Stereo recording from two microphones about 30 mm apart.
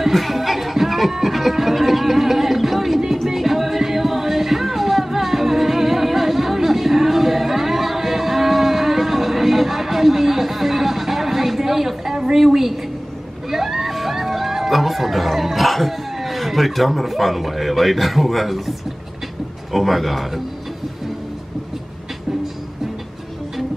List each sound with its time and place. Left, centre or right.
0.0 s music: centre
13.5 s a sound: centre
19.7 s speech: centre